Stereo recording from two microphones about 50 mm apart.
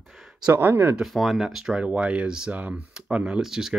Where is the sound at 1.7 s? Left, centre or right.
Right.